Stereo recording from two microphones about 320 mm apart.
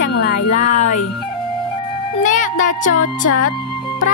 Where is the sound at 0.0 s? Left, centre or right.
Left.